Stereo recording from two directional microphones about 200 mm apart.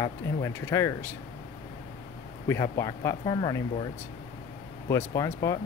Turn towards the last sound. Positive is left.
turn(degrees=15)  # may be behind; listen again after turning